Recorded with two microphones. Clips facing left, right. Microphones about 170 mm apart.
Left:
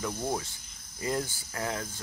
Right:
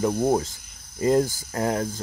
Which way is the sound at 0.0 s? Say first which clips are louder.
Right 11 dB; 40° right (ahead or behind).